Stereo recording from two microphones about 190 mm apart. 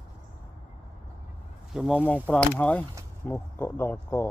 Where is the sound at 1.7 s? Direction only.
Centre (ahead or behind).